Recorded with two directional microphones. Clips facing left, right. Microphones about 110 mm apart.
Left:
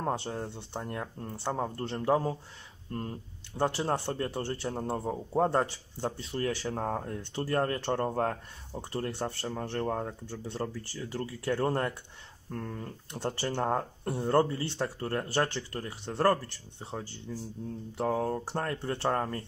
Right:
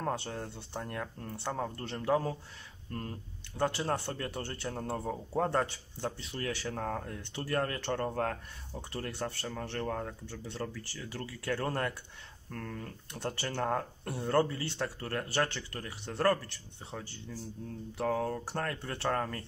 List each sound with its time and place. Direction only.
0.0 s speech: 25° left (ahead or behind)